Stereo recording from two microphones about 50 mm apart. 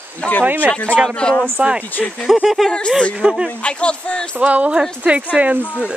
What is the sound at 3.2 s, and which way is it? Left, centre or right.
Speech, centre.